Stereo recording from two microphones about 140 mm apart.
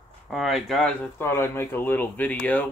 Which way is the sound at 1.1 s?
20° left (ahead or behind).